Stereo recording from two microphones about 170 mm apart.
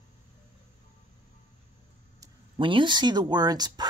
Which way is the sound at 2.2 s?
30° right (ahead or behind).